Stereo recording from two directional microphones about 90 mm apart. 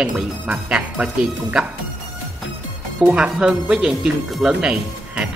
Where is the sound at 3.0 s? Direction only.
10° right (ahead or behind).